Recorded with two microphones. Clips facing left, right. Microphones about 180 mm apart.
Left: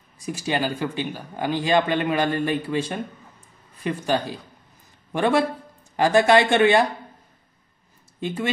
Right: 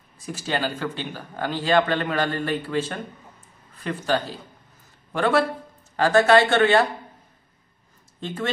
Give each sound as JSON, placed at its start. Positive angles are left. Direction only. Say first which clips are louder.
{"t": 0.2, "sound": "a man's voice", "louder": "left 2 dB", "side_deg": 15}